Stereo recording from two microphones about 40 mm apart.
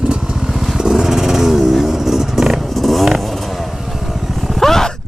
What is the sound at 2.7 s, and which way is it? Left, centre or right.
Vehicle, centre.